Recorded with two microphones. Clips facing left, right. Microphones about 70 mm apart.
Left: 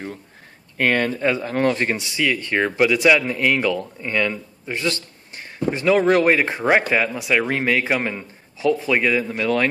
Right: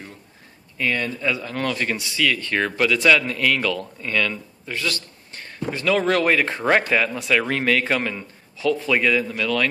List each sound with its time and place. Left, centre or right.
0.7 s speech: left; by 9.3 s centre
9.3 s speech: left